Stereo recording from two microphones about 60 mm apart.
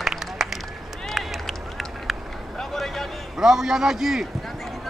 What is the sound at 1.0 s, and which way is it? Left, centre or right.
Run, centre.